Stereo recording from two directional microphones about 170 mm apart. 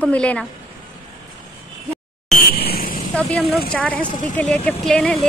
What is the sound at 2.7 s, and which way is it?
Vehicle, 55° left (ahead or behind).